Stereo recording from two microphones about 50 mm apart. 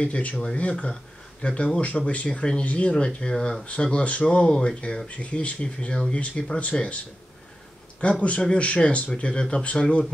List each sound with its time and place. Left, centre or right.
0.0 s speech: left
8.0 s speech: left